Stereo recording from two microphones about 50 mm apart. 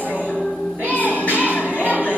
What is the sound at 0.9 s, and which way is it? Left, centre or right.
Music, left.